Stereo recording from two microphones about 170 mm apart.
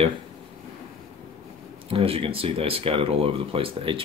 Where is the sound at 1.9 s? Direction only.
35° right (ahead or behind).